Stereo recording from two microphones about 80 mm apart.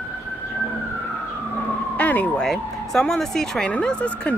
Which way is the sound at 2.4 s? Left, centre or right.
Centre.